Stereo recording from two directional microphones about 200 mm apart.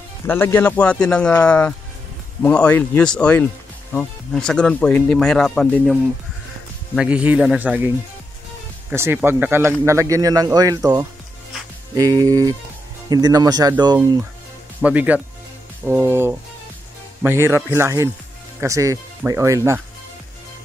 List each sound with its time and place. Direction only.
0.3 s speech: 10° left (ahead or behind)
7.0 s speech: 5° right (ahead or behind)
8.9 s speech: 10° right (ahead or behind)
14.8 s speech: 5° right (ahead or behind)